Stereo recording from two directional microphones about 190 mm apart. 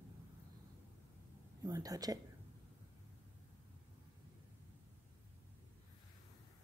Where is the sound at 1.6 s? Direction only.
20° right (ahead or behind).